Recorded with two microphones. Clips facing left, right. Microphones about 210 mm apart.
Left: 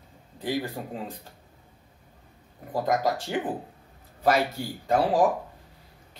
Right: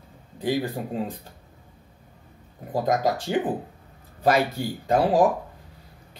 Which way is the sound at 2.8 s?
20° right (ahead or behind).